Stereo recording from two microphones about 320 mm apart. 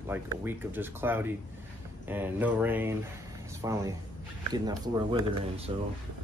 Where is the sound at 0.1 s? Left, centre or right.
Centre.